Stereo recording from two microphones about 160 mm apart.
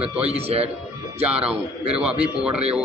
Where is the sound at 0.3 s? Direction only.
40° right (ahead or behind).